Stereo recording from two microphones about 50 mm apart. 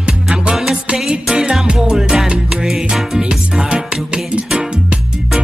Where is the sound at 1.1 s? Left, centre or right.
Centre.